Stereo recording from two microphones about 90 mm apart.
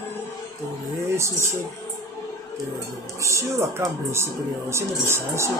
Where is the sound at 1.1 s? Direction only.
30° right (ahead or behind).